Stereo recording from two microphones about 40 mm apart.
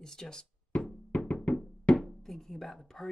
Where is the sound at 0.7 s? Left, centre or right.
Left.